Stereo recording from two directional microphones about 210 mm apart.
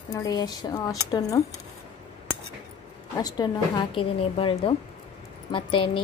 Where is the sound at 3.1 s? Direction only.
20° left (ahead or behind).